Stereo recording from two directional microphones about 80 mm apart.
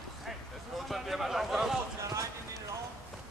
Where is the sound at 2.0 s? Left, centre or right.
Right.